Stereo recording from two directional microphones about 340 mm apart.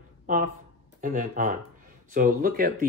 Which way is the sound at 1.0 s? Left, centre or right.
Right.